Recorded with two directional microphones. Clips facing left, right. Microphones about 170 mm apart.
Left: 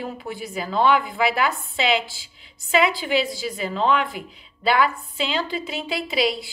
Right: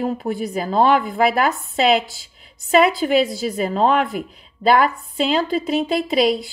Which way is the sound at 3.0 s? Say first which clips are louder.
Right 6 dB; 50° right (ahead or behind).